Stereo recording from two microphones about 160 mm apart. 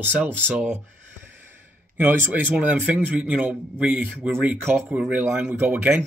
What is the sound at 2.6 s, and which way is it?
Speech, 10° right (ahead or behind).